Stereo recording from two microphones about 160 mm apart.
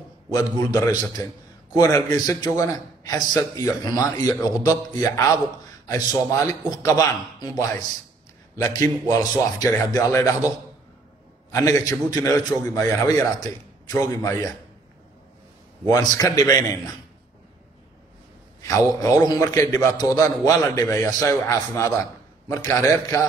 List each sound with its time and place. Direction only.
0.3 s a man's voice: 25° left (ahead or behind)
11.5 s a man's voice: 20° left (ahead or behind)
15.9 s a man's voice: 25° left (ahead or behind)
18.6 s a man's voice: 20° left (ahead or behind)